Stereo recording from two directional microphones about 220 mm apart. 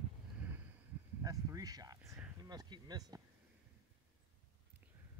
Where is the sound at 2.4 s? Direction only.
20° right (ahead or behind).